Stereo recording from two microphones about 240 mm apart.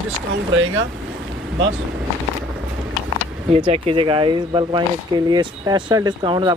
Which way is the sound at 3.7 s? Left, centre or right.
Right.